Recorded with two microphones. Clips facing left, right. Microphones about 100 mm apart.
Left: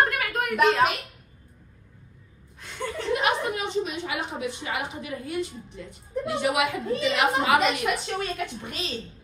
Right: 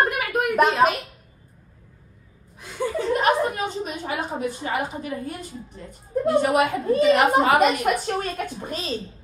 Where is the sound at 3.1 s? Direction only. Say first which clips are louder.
Right 4 dB; 40° right (ahead or behind).